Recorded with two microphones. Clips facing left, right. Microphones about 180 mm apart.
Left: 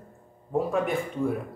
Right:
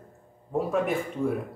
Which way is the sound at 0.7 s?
Centre (ahead or behind).